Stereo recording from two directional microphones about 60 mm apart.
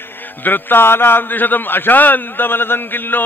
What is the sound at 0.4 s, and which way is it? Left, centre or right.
Mantra, left.